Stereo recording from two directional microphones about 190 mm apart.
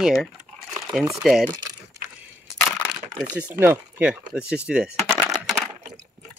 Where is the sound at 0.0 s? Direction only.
Centre (ahead or behind).